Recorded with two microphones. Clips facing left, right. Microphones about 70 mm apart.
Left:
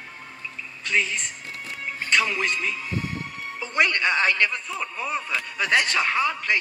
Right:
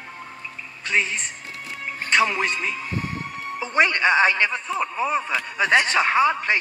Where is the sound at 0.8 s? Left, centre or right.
Right.